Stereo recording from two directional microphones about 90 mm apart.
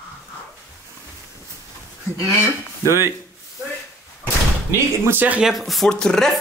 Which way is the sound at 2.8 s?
25° right (ahead or behind).